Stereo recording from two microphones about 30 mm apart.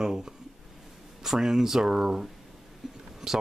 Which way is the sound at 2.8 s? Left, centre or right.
Centre.